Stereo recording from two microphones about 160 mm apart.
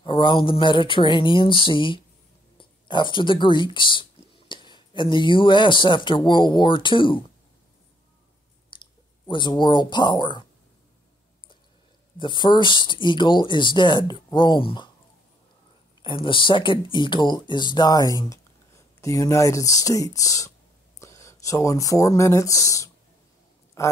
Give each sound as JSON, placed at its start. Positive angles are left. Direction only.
{"t": 0.0, "sound": "speech", "side_deg": 30}
{"t": 8.7, "sound": "clicking", "side_deg": 30}
{"t": 9.3, "sound": "speech", "side_deg": 30}
{"t": 12.2, "sound": "speech", "side_deg": 30}
{"t": 16.0, "sound": "a man's voice", "side_deg": 30}